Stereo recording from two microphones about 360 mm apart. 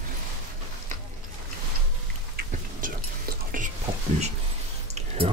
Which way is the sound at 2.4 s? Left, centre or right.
Right.